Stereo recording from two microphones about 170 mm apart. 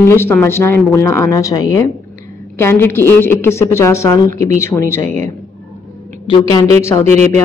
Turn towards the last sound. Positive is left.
turn(degrees=15)  # may be behind; listen again after turning